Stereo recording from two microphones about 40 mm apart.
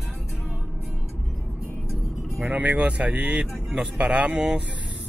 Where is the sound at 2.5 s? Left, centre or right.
Right.